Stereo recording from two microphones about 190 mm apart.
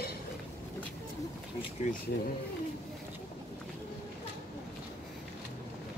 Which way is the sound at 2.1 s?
60° left (ahead or behind).